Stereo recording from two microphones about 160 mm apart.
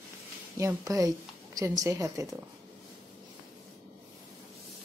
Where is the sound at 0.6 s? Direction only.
20° right (ahead or behind).